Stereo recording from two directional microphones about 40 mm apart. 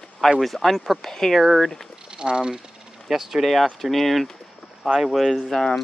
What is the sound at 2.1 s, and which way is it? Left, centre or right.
Speech, right.